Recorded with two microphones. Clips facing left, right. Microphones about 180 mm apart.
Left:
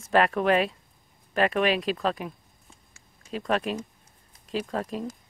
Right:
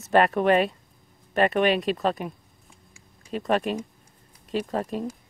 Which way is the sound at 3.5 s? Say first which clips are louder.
Right 3 dB; centre (ahead or behind).